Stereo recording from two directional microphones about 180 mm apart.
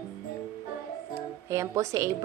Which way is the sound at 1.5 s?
15° right (ahead or behind).